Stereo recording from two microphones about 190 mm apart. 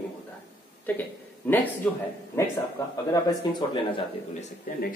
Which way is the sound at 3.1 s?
25° left (ahead or behind).